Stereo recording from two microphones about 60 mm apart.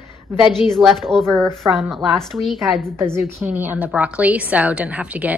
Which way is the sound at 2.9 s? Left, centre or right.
Right.